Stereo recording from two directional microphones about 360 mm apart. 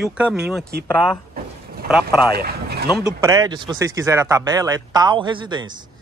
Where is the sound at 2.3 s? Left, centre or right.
Right.